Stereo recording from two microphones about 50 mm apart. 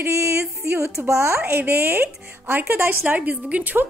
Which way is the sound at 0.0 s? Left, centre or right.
Right.